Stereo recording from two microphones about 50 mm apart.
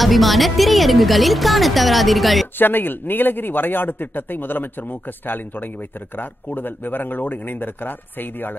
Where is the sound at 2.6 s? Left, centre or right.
Left.